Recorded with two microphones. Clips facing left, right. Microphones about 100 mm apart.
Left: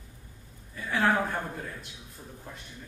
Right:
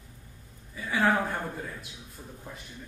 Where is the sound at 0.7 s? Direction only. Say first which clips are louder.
Even; centre (ahead or behind).